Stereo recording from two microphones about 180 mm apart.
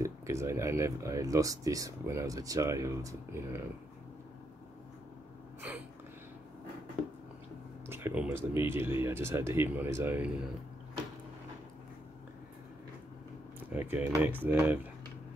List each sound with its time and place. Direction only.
0.0 s speech: 15° right (ahead or behind)
5.6 s a sound: 10° right (ahead or behind)
7.8 s speech: 15° right (ahead or behind)
13.7 s speech: 10° right (ahead or behind)